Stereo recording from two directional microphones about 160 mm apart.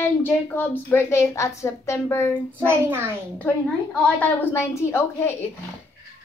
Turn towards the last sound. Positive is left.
turn(degrees=15)  # may be behind; listen again after turning